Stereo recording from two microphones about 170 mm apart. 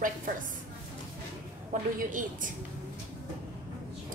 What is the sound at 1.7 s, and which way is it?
Speech, 50° right (ahead or behind).